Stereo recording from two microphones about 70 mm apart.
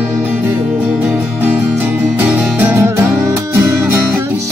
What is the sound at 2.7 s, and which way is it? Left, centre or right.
Music, right.